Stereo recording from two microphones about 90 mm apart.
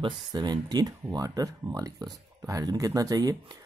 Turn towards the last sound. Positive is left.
turn(degrees=-40)  # may be behind; listen again after turning